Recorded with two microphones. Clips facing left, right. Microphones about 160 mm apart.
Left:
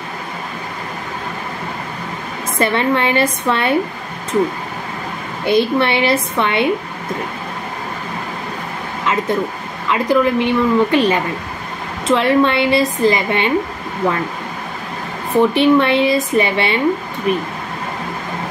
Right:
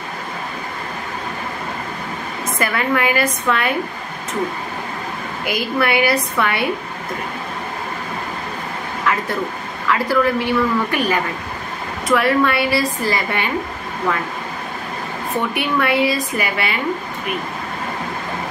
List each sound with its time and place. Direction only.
2.6 s a woman's voice: 30° left (ahead or behind)
5.4 s a woman's voice: 30° left (ahead or behind)
9.0 s vehicle: 20° left (ahead or behind)
9.8 s a woman's voice: 20° left (ahead or behind)
15.5 s a woman's voice: 25° left (ahead or behind)